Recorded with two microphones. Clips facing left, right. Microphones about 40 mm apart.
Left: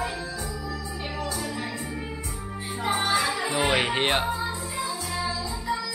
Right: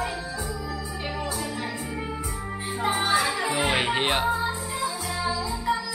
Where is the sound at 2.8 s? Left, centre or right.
Centre.